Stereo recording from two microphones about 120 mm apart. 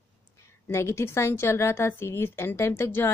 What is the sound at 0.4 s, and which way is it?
A woman's voice, 20° left (ahead or behind).